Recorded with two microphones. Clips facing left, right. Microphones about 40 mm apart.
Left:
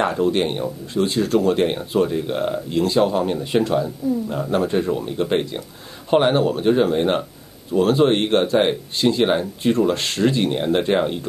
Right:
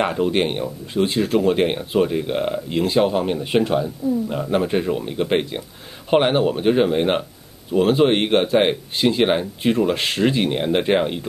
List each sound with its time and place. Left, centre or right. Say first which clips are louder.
0.0 s speech: even; right